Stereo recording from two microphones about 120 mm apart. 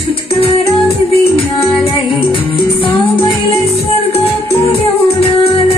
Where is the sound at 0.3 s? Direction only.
50° left (ahead or behind).